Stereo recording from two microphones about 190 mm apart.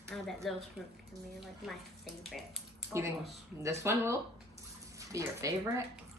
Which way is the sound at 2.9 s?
15° right (ahead or behind).